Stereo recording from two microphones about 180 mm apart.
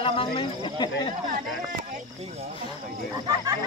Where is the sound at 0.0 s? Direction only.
30° left (ahead or behind).